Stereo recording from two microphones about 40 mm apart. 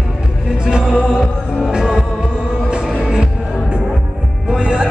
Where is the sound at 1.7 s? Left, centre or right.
Centre.